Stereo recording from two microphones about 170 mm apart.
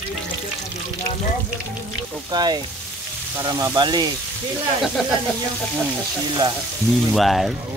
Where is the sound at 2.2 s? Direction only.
25° right (ahead or behind).